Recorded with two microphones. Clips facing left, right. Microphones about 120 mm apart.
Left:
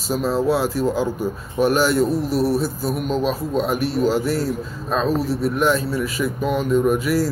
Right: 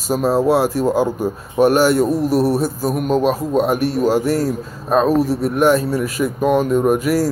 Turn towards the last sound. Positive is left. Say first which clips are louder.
# right 3 dB
turn(degrees=-45)  # may be behind; listen again after turning